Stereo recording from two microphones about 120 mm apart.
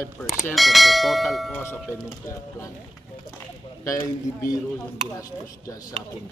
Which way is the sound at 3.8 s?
25° left (ahead or behind).